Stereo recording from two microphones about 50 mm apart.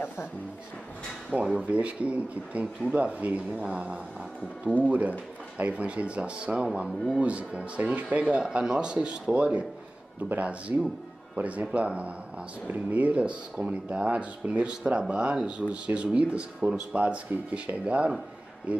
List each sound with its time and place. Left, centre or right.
1.4 s speech: right
2.6 s speech: centre
3.0 s speech: right